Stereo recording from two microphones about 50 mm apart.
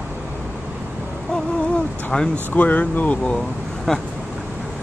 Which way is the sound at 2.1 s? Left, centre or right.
Centre.